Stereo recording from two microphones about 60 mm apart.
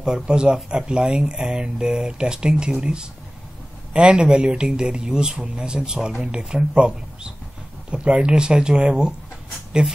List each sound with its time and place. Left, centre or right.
0.0 s speech: centre